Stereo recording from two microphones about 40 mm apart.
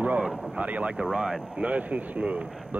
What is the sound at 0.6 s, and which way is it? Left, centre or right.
Speech, right.